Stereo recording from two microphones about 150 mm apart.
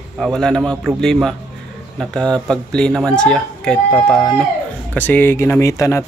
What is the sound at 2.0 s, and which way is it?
Speech, 5° left (ahead or behind).